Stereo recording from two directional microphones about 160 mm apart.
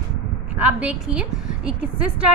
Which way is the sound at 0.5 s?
10° right (ahead or behind).